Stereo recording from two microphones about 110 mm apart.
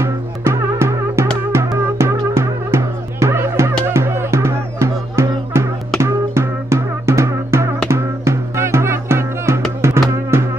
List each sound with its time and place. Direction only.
0.0 s music: 25° right (ahead or behind)